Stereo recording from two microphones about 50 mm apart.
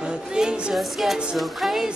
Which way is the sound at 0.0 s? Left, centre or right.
Centre.